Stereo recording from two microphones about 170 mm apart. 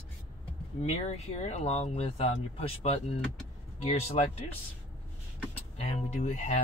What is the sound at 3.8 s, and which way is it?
Speech, 35° left (ahead or behind).